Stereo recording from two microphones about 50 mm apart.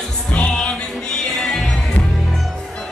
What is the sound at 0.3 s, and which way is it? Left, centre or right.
Music, left.